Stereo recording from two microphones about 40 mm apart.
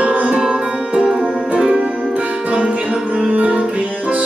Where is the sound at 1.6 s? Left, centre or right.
Right.